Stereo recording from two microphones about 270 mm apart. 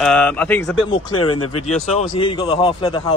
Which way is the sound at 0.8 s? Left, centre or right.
Centre.